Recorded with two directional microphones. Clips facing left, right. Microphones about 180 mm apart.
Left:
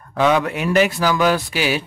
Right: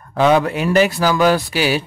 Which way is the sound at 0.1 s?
35° right (ahead or behind).